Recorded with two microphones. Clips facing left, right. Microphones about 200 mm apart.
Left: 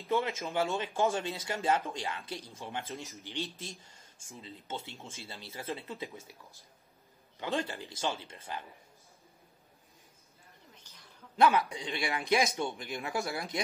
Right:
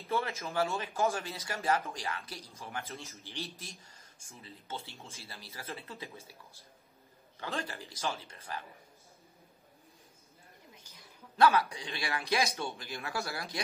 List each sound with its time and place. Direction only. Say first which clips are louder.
0.0 s a man's voice: left 3 dB; 15° left (ahead or behind)
7.3 s a man's voice: left 4 dB; 20° left (ahead or behind)
10.7 s a sound: right 2 dB; 10° right (ahead or behind)
11.3 s a man's voice: even; 20° left (ahead or behind)